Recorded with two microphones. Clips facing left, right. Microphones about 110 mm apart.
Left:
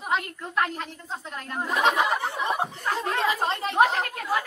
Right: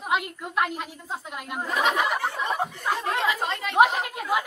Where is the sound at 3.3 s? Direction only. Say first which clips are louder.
Left 2 dB; 30° left (ahead or behind).